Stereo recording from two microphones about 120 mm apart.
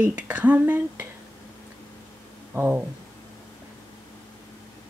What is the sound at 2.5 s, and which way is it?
Speech, 15° right (ahead or behind).